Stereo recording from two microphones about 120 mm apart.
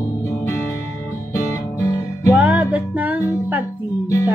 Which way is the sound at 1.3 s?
25° left (ahead or behind).